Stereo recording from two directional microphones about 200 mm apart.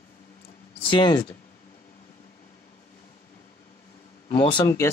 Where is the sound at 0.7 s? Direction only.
25° left (ahead or behind).